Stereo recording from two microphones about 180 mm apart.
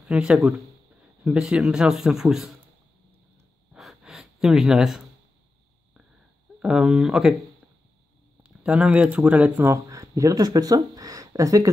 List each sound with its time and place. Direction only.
0.1 s speech: 5° right (ahead or behind)
3.7 s gasp: 5° right (ahead or behind)
6.6 s speech: centre (ahead or behind)
8.4 s speech: 5° right (ahead or behind)